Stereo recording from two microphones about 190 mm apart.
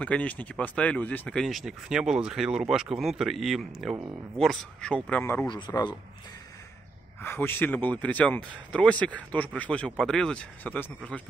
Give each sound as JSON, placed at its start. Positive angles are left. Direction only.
{"t": 0.0, "sound": "speech", "side_deg": 5}
{"t": 7.2, "sound": "speech", "side_deg": 10}